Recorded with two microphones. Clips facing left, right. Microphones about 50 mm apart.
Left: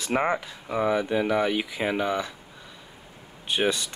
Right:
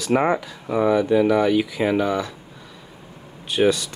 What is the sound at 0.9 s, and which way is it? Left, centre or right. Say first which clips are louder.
Speech: right 7 dB; centre.